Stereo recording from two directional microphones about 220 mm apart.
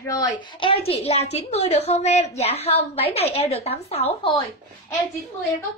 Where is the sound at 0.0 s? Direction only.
15° left (ahead or behind).